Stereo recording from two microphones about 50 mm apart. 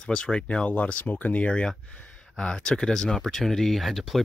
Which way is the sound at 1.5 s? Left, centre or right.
Centre.